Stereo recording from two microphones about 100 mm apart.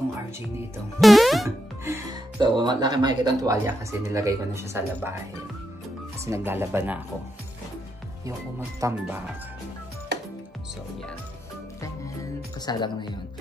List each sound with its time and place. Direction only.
1.0 s music: centre (ahead or behind)
1.9 s speech: 35° right (ahead or behind)
6.2 s speech: 25° right (ahead or behind)
8.3 s speech: 30° right (ahead or behind)
12.5 s speech: 45° left (ahead or behind)